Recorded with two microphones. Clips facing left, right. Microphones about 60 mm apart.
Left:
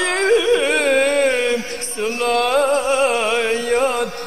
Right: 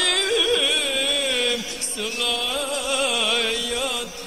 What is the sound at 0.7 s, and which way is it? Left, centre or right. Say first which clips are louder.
Music: left 10 dB; left.